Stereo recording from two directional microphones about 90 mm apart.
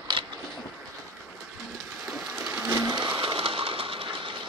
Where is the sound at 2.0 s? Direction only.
10° right (ahead or behind).